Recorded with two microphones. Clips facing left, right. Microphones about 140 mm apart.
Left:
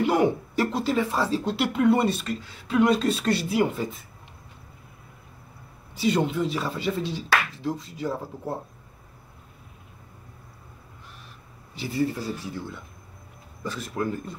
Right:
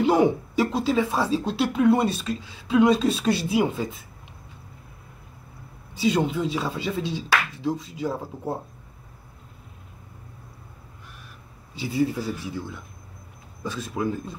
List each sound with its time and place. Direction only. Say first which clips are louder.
0.0 s speech: right 2 dB; 20° right (ahead or behind)
0.7 s speech: right 1 dB; 10° right (ahead or behind)
1.6 s speech: right 1 dB; centre (ahead or behind)
5.9 s speech: right 1 dB; 10° right (ahead or behind)
7.0 s finger snapping: right 1 dB; 15° right (ahead or behind)
8.0 s speech: right 1 dB; 15° right (ahead or behind)
11.9 s speech: right 2 dB; 15° right (ahead or behind)